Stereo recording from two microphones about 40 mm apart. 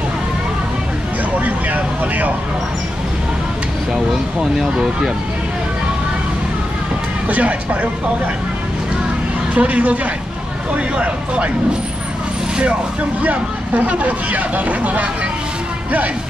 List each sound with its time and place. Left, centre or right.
1.4 s vehicle: right
4.6 s speech: centre
7.2 s speech: right
9.6 s speech: right
13.2 s speech: right